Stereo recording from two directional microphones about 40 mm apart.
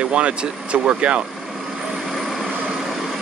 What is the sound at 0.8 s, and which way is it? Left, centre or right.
Speech, right.